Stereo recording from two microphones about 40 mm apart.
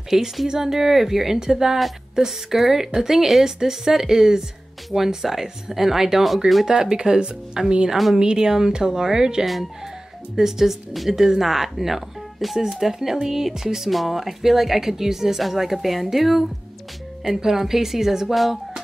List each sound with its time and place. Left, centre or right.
0.1 s speech: centre